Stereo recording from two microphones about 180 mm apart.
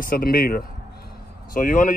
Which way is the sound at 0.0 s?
55° left (ahead or behind).